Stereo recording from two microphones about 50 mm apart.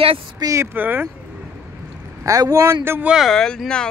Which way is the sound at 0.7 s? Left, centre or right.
Right.